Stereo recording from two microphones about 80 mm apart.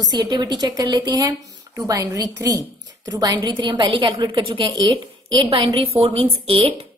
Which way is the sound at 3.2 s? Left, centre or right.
Right.